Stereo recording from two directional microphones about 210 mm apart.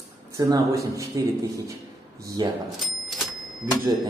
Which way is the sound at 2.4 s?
20° right (ahead or behind).